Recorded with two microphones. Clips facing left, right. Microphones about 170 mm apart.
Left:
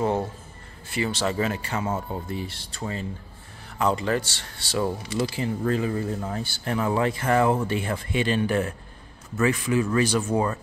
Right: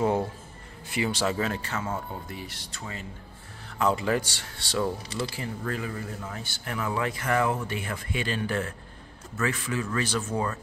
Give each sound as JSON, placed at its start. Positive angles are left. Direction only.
{"t": 0.8, "sound": "speech", "side_deg": -15}
{"t": 1.3, "sound": "a man's voice", "side_deg": 5}
{"t": 1.7, "sound": "speech", "side_deg": 20}
{"t": 3.7, "sound": "speech", "side_deg": -5}
{"t": 4.6, "sound": "a man's voice", "side_deg": 5}
{"t": 5.2, "sound": "speech", "side_deg": 25}